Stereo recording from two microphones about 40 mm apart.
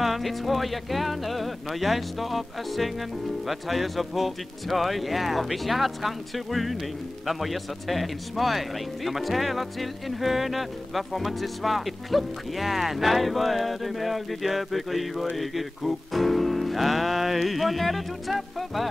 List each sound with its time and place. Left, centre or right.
0.0 s speech: centre